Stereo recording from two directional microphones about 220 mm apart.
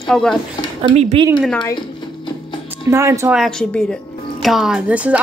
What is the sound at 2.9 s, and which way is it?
Speech, 15° right (ahead or behind).